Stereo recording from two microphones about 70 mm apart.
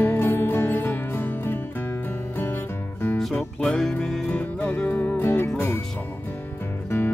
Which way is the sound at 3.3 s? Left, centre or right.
Left.